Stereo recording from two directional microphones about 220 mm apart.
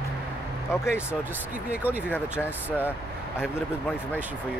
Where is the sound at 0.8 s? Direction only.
10° left (ahead or behind).